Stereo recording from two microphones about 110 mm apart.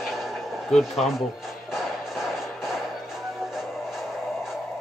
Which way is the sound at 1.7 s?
Centre (ahead or behind).